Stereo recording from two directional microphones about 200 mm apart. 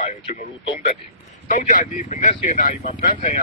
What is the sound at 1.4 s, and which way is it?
Speech, 40° left (ahead or behind).